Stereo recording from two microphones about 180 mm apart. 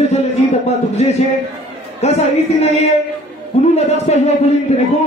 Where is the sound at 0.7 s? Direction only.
35° left (ahead or behind).